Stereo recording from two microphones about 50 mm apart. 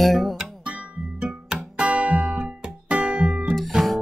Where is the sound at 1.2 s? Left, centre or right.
Centre.